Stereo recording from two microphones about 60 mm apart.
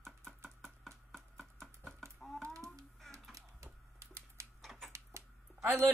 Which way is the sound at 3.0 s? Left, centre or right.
Centre.